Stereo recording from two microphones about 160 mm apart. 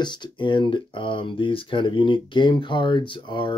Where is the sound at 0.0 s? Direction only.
30° left (ahead or behind).